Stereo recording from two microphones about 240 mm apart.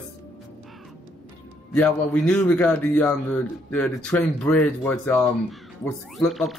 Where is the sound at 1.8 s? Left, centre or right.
Centre.